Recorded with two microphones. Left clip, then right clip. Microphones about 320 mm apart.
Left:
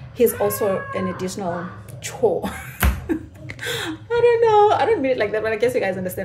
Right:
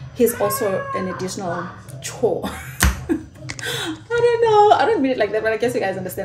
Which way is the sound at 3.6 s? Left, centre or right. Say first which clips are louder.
Even; centre.